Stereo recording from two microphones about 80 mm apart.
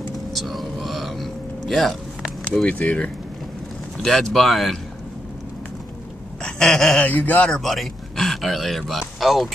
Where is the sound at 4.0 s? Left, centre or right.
Centre.